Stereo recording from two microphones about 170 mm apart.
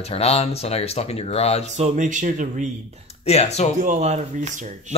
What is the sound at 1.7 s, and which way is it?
Speech, 45° right (ahead or behind).